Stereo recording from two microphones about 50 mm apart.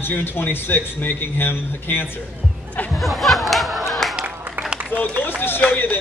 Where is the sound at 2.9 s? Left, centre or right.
Centre.